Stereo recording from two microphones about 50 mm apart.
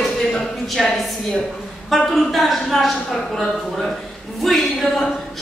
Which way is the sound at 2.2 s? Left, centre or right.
Centre.